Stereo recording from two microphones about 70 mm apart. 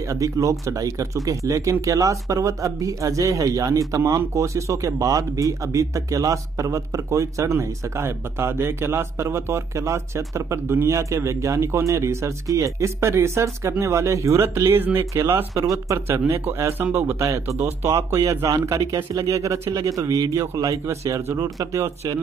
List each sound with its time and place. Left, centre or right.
0.1 s speech: right
14.7 s speech: right
15.5 s speech: right
16.1 s speech: right
17.6 s speech: right
17.9 s speech: right